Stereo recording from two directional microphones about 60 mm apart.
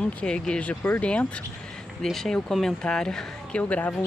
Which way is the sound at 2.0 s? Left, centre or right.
Centre.